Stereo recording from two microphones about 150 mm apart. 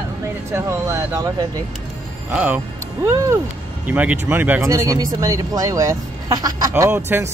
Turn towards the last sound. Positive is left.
turn(degrees=-15)  # may be behind; listen again after turning